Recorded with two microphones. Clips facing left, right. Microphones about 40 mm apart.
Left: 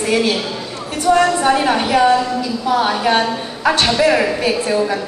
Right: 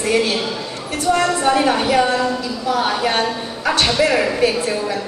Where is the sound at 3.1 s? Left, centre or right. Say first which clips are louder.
Left 3 dB; centre.